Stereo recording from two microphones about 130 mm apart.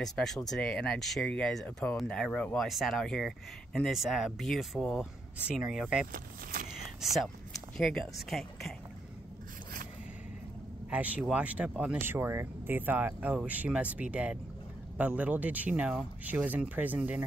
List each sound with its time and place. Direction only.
0.0 s speech: 5° left (ahead or behind)
6.1 s speech: 90° right
7.0 s speech: centre (ahead or behind)
10.9 s speech: 10° right (ahead or behind)